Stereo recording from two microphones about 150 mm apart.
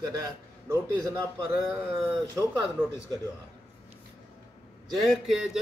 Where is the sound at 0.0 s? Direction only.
25° right (ahead or behind).